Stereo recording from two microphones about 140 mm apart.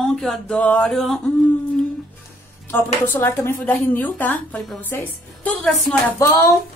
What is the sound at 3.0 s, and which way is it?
A woman's voice, 15° left (ahead or behind).